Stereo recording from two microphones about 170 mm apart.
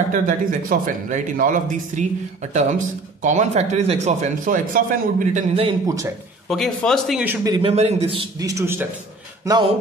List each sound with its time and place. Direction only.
0.1 s speech: 50° right (ahead or behind)
5.7 s speech: 20° right (ahead or behind)
6.5 s a man's voice: centre (ahead or behind)
7.4 s speech: 25° right (ahead or behind)
7.7 s a man's voice: 35° right (ahead or behind)
8.4 s a man's voice: 20° right (ahead or behind)